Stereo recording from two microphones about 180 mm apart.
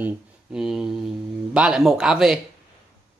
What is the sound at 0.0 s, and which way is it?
Speech, 5° right (ahead or behind).